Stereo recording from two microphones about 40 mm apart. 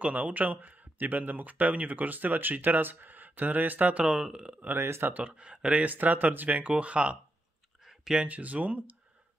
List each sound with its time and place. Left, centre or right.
0.0 s speech: right
3.9 s speech: right
4.7 s speech: right
5.3 s speech: right
5.9 s speech: right
6.8 s speech: right
7.8 s a sound: centre
8.3 s speech: right